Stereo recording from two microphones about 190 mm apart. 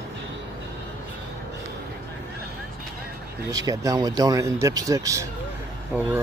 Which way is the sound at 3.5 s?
20° right (ahead or behind).